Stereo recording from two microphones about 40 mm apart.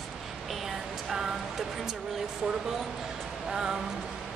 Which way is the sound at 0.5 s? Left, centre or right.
Centre.